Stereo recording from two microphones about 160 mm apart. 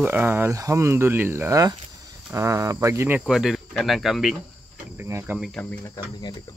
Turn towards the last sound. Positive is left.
turn(degrees=0)  # may be behind; listen again after turning